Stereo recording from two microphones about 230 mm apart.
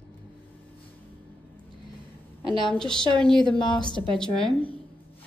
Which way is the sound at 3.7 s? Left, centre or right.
Centre.